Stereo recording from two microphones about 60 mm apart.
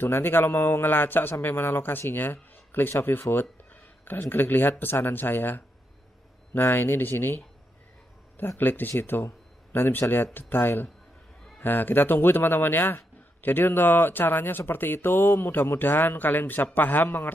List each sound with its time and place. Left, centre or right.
0.0 s a man's voice: left